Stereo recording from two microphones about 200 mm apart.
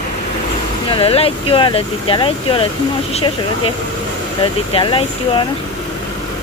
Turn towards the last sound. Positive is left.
turn(degrees=25)  # may be behind; listen again after turning